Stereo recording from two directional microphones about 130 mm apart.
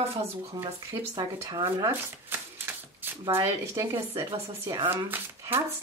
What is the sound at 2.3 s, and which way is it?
Typewriter, 15° right (ahead or behind).